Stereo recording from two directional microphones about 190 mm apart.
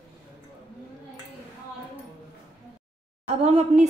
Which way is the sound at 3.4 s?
35° right (ahead or behind).